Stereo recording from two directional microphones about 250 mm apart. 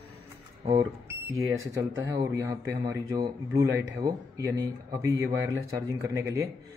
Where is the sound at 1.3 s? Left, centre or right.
Centre.